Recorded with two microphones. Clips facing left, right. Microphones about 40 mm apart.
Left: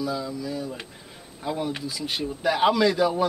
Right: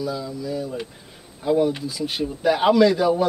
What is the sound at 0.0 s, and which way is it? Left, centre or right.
Speech, centre.